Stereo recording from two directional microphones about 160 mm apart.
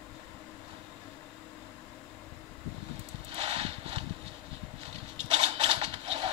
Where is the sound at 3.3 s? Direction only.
40° right (ahead or behind).